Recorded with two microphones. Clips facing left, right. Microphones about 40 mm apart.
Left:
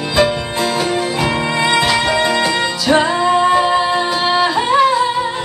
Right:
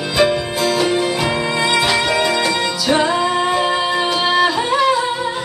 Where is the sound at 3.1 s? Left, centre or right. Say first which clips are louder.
Left 4 dB; centre.